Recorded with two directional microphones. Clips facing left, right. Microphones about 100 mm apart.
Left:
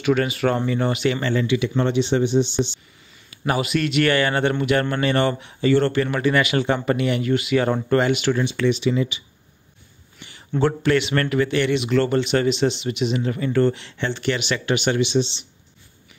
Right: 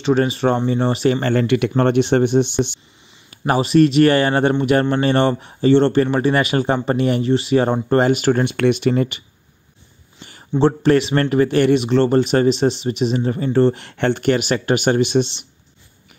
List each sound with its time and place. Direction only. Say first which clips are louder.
0.0 s speech: right 3 dB; 35° right (ahead or behind)
1.3 s speech: right 4 dB; 60° right (ahead or behind)
3.3 s speech: right 4 dB; 35° right (ahead or behind); by 9.2 s 55° right (ahead or behind)
10.6 s speech: right 5 dB; 35° right (ahead or behind)
13.7 s speech: right 7 dB; 55° right (ahead or behind)